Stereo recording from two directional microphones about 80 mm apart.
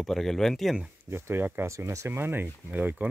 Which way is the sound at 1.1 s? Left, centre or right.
Right.